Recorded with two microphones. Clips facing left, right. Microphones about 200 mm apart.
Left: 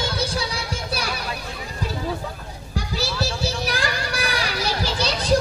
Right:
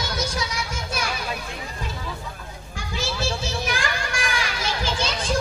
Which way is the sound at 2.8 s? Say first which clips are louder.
Left 3 dB; 35° left (ahead or behind).